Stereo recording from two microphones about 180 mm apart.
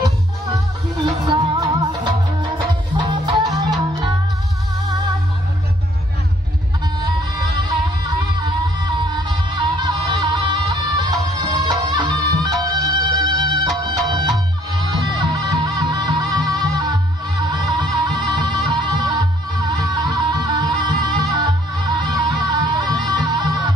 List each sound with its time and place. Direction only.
0.9 s music: 25° right (ahead or behind)
9.1 s music: 25° right (ahead or behind)